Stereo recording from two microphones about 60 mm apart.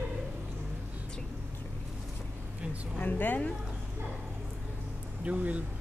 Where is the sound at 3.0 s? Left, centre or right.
Left.